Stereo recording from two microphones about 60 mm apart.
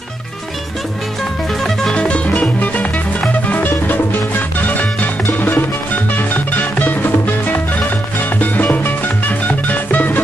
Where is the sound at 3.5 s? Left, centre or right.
Left.